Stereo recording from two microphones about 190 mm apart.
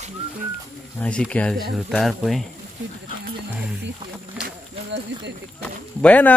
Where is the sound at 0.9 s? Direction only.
5° left (ahead or behind).